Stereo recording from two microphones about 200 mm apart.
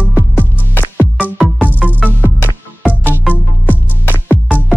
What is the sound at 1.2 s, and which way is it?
Music, 5° right (ahead or behind).